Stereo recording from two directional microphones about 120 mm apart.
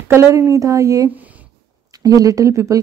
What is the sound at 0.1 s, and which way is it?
Speech, 20° right (ahead or behind).